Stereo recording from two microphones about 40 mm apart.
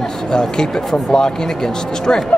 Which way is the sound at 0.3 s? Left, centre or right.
Centre.